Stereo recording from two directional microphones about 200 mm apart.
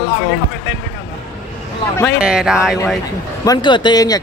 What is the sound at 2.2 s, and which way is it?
Speech, 5° right (ahead or behind).